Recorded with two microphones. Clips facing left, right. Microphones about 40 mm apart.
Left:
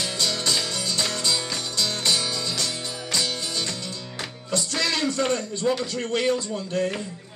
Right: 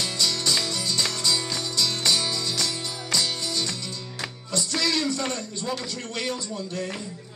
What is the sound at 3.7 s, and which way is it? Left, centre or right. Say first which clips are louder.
Music: left 1 dB; left.